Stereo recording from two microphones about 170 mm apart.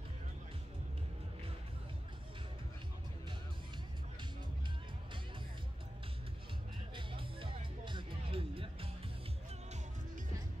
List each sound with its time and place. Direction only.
7.0 s music: 30° right (ahead or behind)